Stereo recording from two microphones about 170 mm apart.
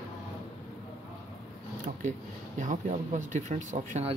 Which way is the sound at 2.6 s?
45° right (ahead or behind).